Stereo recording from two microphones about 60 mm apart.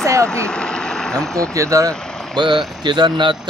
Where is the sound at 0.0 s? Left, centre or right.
Right.